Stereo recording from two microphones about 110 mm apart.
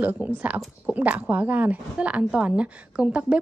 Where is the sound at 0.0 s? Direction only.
15° right (ahead or behind).